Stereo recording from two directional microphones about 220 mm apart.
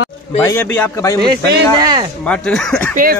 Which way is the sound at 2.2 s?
5° left (ahead or behind).